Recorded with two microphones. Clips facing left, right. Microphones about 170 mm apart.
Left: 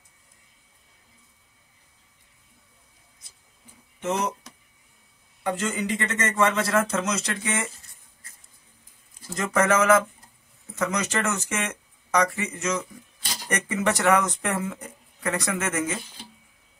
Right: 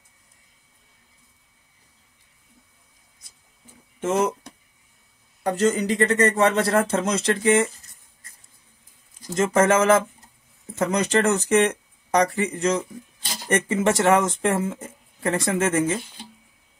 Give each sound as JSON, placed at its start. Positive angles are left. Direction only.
{"t": 4.0, "sound": "speech", "side_deg": -50}
{"t": 5.4, "sound": "speech", "side_deg": -40}
{"t": 9.2, "sound": "speech", "side_deg": -25}